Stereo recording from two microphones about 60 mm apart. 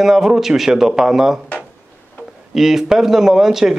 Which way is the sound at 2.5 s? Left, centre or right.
Centre.